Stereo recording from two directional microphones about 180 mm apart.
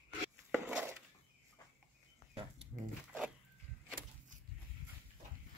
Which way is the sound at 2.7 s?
25° right (ahead or behind).